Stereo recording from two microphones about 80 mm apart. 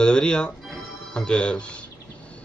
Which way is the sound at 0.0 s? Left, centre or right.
Centre.